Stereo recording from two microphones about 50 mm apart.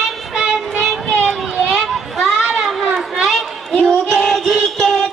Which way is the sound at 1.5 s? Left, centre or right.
Centre.